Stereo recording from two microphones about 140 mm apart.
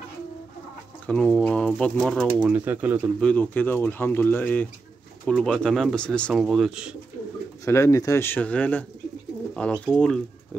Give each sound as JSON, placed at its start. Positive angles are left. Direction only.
{"t": 1.0, "sound": "speech", "side_deg": 10}
{"t": 2.4, "sound": "speech", "side_deg": -15}
{"t": 3.2, "sound": "speech", "side_deg": 10}
{"t": 7.6, "sound": "speech", "side_deg": 20}
{"t": 9.5, "sound": "bird", "side_deg": 10}
{"t": 9.9, "sound": "speech", "side_deg": 5}